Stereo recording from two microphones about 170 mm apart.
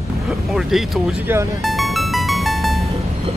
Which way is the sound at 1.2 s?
15° right (ahead or behind).